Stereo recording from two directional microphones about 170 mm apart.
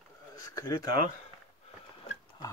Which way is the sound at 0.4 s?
20° left (ahead or behind).